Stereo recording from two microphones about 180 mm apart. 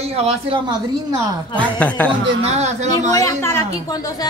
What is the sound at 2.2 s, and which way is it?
Speech, 35° right (ahead or behind).